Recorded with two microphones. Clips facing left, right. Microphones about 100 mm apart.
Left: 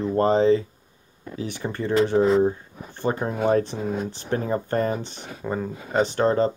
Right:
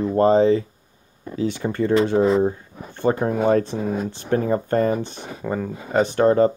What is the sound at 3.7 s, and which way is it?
Speech, 20° right (ahead or behind).